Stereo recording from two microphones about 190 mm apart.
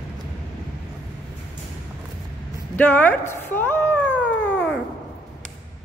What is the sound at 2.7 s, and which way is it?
Speech, 10° left (ahead or behind).